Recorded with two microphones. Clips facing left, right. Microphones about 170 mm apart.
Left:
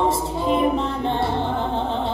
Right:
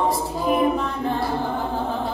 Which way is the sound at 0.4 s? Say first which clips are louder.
Even; 25° left (ahead or behind).